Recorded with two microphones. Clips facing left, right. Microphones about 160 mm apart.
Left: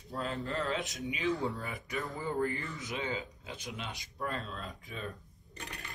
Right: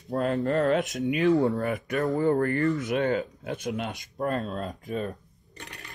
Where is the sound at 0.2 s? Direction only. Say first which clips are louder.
Right 11 dB; 60° right (ahead or behind).